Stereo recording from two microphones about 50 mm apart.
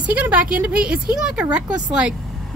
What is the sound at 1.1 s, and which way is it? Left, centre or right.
A woman's voice, centre.